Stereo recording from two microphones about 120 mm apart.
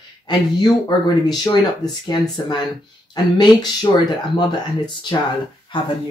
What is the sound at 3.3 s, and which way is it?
Speech, 35° left (ahead or behind).